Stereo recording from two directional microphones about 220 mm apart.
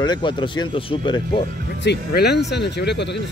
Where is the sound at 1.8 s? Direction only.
50° left (ahead or behind).